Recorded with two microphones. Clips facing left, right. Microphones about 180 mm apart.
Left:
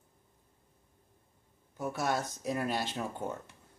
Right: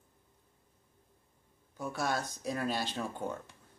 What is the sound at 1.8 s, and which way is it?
Speech, 20° left (ahead or behind).